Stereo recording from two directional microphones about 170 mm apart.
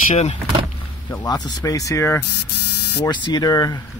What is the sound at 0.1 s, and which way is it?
Speech, 40° left (ahead or behind).